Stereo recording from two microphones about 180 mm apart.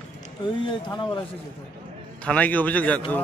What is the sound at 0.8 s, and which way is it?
Speech, 25° left (ahead or behind).